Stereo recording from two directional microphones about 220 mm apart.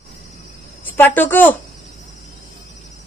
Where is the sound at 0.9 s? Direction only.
10° left (ahead or behind).